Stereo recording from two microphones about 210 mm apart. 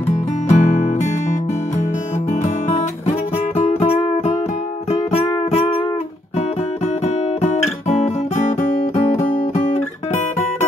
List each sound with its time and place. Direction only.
0.1 s music: 35° left (ahead or behind)
3.1 s music: 30° left (ahead or behind)